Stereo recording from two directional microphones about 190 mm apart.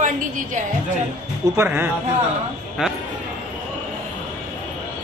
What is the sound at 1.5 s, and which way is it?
Speech, 10° right (ahead or behind).